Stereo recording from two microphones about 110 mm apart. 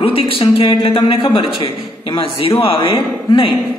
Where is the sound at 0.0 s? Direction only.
55° left (ahead or behind).